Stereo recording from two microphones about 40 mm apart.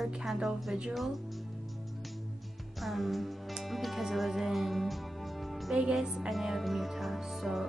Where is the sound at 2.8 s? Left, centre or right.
Centre.